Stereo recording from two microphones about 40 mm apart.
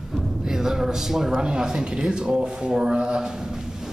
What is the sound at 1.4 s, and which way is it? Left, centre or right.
Speech, right.